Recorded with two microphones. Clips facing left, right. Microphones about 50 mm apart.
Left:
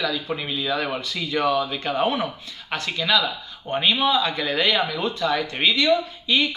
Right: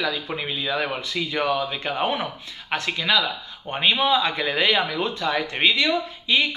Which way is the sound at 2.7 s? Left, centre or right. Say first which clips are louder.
Even; right.